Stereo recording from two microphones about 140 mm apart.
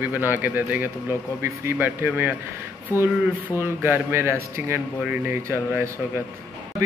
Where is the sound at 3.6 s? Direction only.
15° right (ahead or behind).